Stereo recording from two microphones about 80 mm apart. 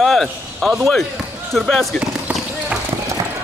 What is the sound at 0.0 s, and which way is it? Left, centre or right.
Speech, centre.